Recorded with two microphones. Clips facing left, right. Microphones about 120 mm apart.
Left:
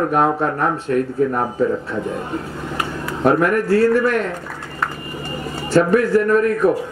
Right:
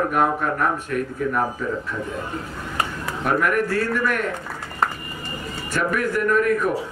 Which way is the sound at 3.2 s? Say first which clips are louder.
Left 5 dB; 30° left (ahead or behind).